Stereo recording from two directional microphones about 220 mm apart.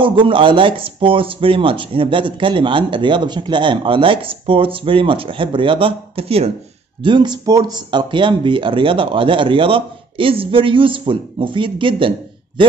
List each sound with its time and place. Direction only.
0.0 s speech: 25° right (ahead or behind)